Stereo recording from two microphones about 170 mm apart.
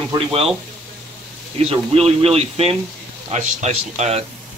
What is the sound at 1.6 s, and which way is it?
Speech, 35° right (ahead or behind).